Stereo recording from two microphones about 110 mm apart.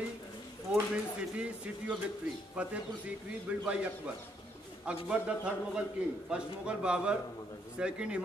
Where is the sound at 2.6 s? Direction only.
10° right (ahead or behind).